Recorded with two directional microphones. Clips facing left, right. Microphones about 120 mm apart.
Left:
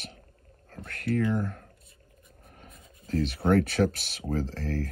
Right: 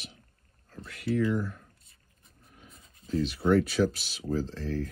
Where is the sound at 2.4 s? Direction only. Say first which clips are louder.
Left 3 dB; 55° left (ahead or behind).